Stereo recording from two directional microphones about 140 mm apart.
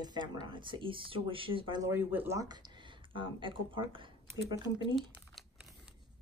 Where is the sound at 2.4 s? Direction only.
30° right (ahead or behind).